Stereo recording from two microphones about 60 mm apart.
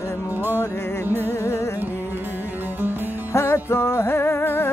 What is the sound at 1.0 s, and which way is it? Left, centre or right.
Music, right.